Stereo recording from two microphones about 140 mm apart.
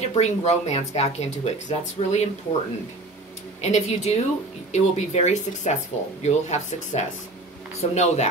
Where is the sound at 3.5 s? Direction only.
55° left (ahead or behind).